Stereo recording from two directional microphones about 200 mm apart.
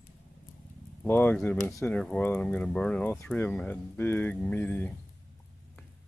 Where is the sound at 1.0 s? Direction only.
10° left (ahead or behind).